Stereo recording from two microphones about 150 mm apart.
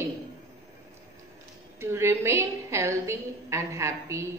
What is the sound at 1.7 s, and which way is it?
A woman's voice, 15° right (ahead or behind).